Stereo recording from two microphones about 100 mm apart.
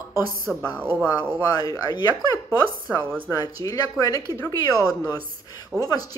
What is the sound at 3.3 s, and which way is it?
Speech, 35° left (ahead or behind).